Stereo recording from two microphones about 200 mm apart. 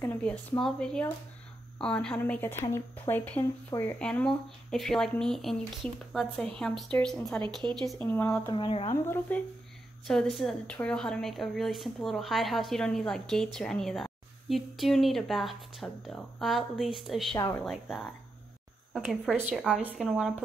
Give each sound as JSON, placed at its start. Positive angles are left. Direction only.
{"t": 0.0, "sound": "a woman's voice", "side_deg": 10}
{"t": 8.5, "sound": "speech", "side_deg": 25}
{"t": 9.0, "sound": "a woman's voice", "side_deg": 10}
{"t": 17.4, "sound": "a woman's voice", "side_deg": 15}
{"t": 17.6, "sound": "a woman's voice", "side_deg": 0}